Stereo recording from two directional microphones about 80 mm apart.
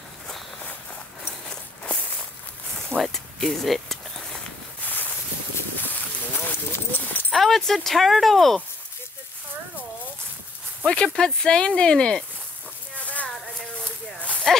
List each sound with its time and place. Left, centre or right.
2.9 s a sound: centre
6.5 s clip-clop: left
7.3 s speech: centre
10.9 s speech: centre
13.0 s a sound: centre
14.5 s speech: centre